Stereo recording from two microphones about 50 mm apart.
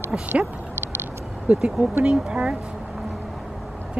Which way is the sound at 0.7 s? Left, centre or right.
Right.